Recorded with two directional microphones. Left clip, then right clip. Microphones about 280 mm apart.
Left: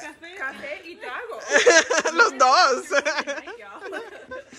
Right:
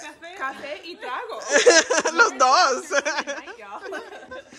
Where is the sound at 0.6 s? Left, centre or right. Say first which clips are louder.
Right 1 dB; right.